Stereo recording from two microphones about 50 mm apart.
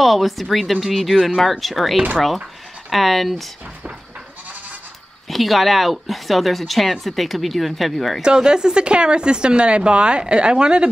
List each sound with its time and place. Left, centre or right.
0.0 s a woman's voice: centre
5.3 s a woman's voice: centre
8.2 s speech: centre